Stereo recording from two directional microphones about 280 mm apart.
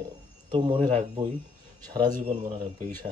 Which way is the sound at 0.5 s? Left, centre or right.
Centre.